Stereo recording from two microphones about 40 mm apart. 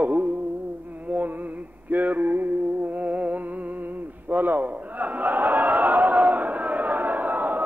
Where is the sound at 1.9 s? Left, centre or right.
Right.